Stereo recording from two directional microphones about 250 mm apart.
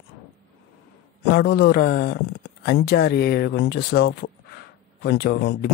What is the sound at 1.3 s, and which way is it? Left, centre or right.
Speech, left.